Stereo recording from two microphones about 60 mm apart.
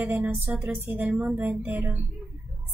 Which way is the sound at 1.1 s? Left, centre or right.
Centre.